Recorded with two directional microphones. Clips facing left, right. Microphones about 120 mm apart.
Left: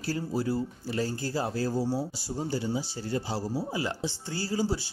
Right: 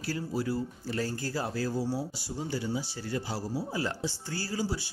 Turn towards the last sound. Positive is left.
turn(degrees=30)  # may be behind; listen again after turning